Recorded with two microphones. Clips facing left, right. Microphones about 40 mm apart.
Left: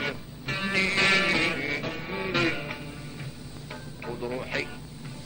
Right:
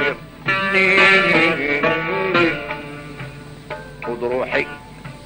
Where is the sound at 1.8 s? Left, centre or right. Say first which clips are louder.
Right 14 dB; right.